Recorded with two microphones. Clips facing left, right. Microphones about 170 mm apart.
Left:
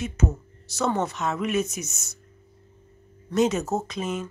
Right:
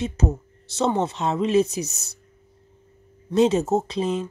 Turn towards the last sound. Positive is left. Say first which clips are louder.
# right 5 dB
turn(degrees=-30)  # may be behind; listen again after turning